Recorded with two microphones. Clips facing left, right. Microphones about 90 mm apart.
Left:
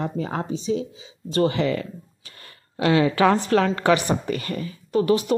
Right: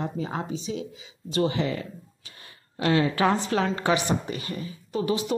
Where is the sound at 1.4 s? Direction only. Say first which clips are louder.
Left 5 dB; 75° left (ahead or behind).